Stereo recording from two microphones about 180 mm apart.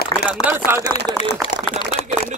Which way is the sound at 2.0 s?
35° left (ahead or behind).